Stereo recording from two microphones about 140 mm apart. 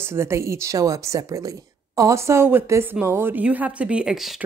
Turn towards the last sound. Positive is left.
turn(degrees=-5)  # may be behind; listen again after turning